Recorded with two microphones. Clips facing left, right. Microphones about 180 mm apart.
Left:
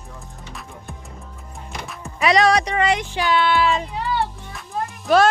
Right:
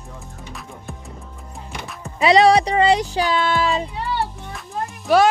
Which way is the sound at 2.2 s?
30° right (ahead or behind).